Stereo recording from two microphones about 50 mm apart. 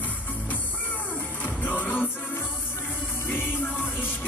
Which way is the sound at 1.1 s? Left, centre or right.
Left.